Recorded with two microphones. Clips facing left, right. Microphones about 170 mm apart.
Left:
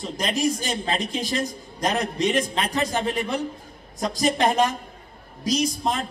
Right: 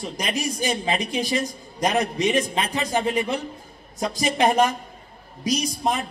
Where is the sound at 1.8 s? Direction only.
20° right (ahead or behind).